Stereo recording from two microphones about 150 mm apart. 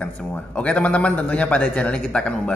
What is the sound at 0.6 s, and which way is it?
A man's voice, 10° left (ahead or behind).